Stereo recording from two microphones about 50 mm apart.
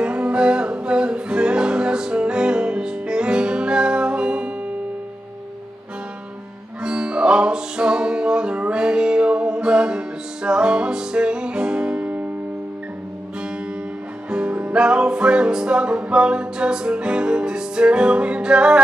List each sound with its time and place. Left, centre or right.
0.0 s music: right
6.8 s music: centre
14.3 s music: right